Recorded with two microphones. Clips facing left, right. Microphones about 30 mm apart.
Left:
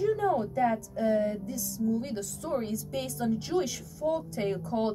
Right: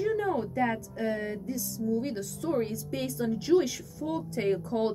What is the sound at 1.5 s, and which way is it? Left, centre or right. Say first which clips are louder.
A woman's voice: even; centre.